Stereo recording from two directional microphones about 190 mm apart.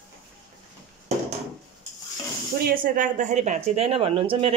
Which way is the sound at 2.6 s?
45° right (ahead or behind).